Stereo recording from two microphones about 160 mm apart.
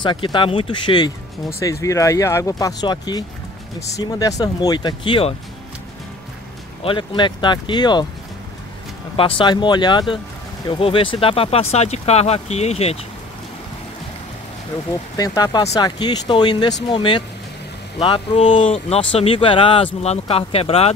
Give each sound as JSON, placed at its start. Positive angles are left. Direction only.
{"t": 0.0, "sound": "speech", "side_deg": 30}
{"t": 6.8, "sound": "speech", "side_deg": 30}
{"t": 9.1, "sound": "speech", "side_deg": 35}
{"t": 15.1, "sound": "speech", "side_deg": 20}